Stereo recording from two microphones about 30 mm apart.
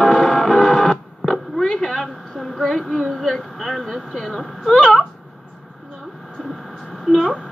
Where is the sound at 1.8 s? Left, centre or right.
Centre.